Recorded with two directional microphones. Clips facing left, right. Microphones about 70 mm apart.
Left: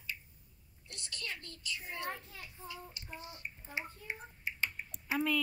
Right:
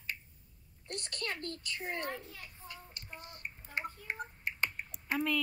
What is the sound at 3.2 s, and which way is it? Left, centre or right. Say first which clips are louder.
Finger snapping: right 1 dB; right.